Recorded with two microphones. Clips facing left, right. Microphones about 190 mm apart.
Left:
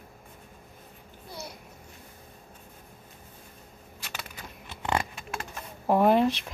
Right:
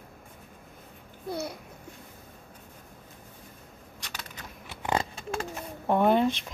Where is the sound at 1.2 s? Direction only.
55° right (ahead or behind).